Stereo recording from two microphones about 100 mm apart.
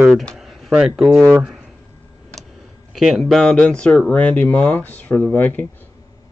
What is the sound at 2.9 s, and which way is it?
Speech, centre (ahead or behind).